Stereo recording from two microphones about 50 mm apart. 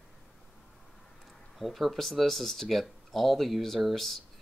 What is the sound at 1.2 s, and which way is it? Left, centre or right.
Speech, centre.